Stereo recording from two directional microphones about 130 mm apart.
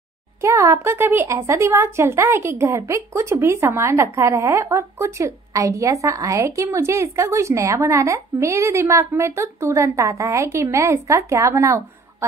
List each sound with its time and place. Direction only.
0.4 s speech: 20° right (ahead or behind)